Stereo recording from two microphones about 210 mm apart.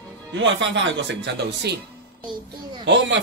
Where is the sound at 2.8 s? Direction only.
55° right (ahead or behind).